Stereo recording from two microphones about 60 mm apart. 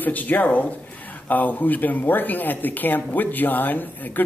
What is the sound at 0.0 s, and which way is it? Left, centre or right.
A man's voice, left.